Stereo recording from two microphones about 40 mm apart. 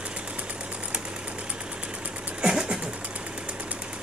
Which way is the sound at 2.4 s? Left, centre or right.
Centre.